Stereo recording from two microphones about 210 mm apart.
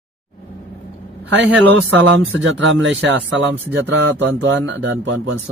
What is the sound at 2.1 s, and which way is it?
Speech, 65° right (ahead or behind).